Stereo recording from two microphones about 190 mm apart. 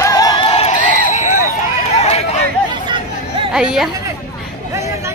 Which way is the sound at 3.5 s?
Centre (ahead or behind).